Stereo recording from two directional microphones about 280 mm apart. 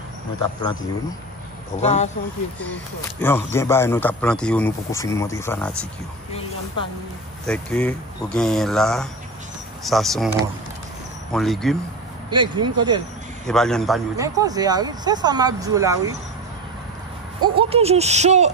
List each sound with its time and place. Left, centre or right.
1.8 s speech: left
2.6 s speech: centre
7.4 s speech: centre
11.3 s speech: centre
12.3 s speech: centre
13.5 s speech: centre
14.1 s speech: centre
17.4 s speech: centre